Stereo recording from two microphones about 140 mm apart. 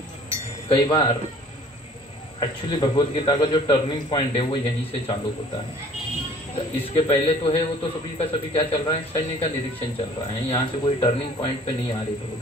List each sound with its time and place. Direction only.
0.7 s a man's voice: 35° left (ahead or behind)
2.4 s a man's voice: 35° left (ahead or behind)
6.5 s a man's voice: 40° left (ahead or behind)